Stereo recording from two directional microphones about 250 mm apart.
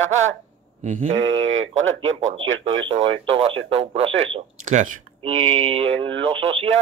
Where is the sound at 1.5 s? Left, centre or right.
Right.